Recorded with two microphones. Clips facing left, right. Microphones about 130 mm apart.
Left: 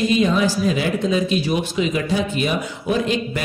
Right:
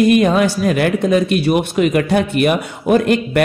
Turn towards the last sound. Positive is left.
turn(degrees=-60)  # may be behind; listen again after turning